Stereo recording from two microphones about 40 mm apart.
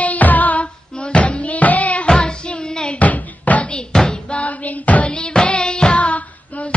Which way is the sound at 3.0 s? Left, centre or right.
Left.